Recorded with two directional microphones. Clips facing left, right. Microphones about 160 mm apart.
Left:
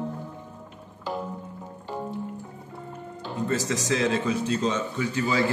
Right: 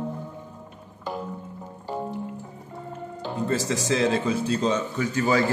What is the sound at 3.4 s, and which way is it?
Speech, 30° right (ahead or behind).